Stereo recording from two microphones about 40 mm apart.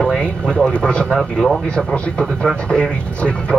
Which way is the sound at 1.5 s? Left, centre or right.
Centre.